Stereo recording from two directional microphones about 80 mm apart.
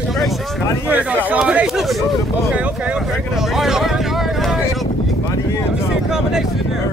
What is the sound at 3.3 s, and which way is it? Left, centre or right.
Vehicle, centre.